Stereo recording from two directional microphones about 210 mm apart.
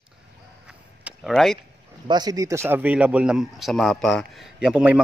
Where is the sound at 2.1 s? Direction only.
20° right (ahead or behind).